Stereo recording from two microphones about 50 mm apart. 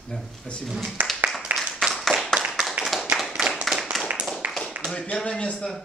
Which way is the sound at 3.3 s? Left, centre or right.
Centre.